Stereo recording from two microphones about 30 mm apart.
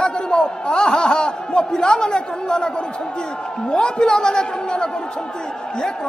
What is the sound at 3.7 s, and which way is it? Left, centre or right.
A woman's voice, left.